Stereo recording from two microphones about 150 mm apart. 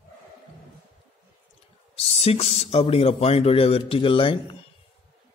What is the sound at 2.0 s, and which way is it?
Speech, 45° left (ahead or behind).